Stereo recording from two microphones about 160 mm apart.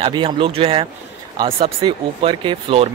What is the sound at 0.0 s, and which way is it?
Speech, 35° right (ahead or behind).